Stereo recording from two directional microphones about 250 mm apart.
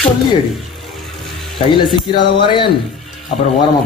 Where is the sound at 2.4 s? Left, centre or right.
Centre.